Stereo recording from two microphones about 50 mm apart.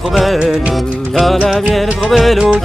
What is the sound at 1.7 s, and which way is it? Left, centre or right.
Music, centre.